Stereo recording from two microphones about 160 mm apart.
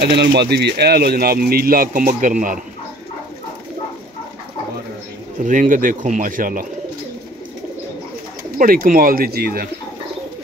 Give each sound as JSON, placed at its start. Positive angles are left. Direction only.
{"t": 0.0, "sound": "speech", "side_deg": -90}
{"t": 5.4, "sound": "speech", "side_deg": -55}
{"t": 8.5, "sound": "speech", "side_deg": -60}